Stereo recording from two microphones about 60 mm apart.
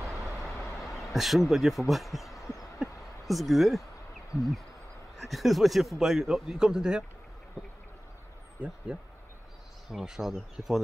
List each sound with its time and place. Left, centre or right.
0.5 s vehicle: left
0.9 s a sound: centre
1.5 s a man's voice: centre
2.4 s heart sounds: left
2.8 s a sound: centre
4.3 s a sound: left
5.1 s a man's voice: centre
8.9 s speech: centre
9.8 s speech: centre